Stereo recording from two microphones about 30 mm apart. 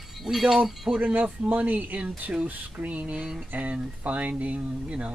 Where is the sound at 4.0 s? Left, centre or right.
Right.